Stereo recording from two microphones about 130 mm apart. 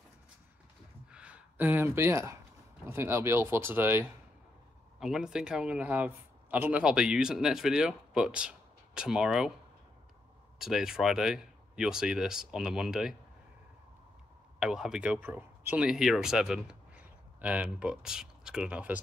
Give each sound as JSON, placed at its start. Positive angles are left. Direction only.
{"t": 1.1, "sound": "a sound", "side_deg": -10}
{"t": 2.9, "sound": "speech", "side_deg": -20}
{"t": 5.0, "sound": "a man's voice", "side_deg": -5}
{"t": 10.6, "sound": "a man's voice", "side_deg": -5}
{"t": 14.6, "sound": "speech", "side_deg": -5}